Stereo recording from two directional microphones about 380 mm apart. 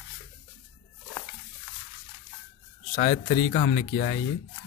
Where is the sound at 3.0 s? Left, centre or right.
Centre.